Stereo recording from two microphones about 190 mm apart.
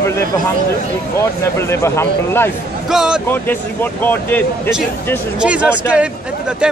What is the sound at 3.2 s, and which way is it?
Speech, 10° left (ahead or behind).